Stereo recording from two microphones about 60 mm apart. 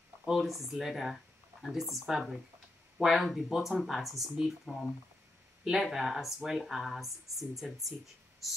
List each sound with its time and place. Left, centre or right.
0.3 s speech: centre